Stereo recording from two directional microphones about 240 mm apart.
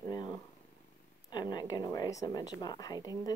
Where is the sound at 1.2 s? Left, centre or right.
Centre.